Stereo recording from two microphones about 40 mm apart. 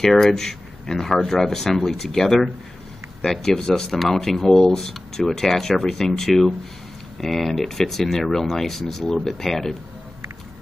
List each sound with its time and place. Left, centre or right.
0.0 s speech: centre